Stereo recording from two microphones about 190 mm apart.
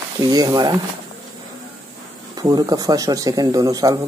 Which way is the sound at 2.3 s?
20° right (ahead or behind).